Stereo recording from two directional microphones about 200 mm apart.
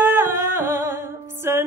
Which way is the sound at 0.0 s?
10° right (ahead or behind).